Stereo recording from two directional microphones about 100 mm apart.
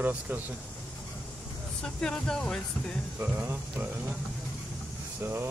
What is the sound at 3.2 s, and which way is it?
Speech, 20° right (ahead or behind).